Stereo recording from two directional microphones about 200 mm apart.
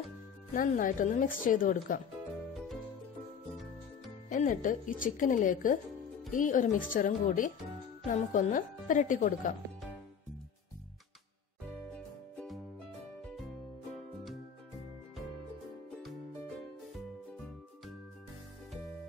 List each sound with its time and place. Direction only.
0.6 s speech: 40° left (ahead or behind)
4.3 s speech: 40° left (ahead or behind)
11.9 s music: 5° left (ahead or behind)
16.0 s music: centre (ahead or behind)